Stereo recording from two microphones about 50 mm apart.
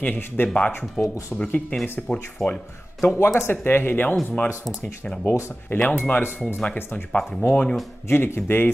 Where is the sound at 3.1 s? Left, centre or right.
Left.